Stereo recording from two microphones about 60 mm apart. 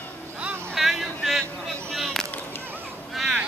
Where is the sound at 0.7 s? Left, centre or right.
Centre.